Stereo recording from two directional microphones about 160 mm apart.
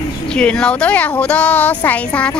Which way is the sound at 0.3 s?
5° left (ahead or behind).